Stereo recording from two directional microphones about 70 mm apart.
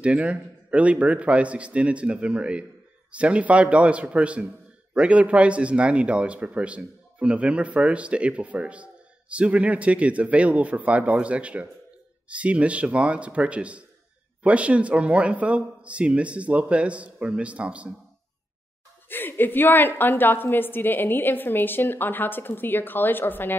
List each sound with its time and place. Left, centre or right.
0.0 s speech: centre
19.0 s a woman's voice: left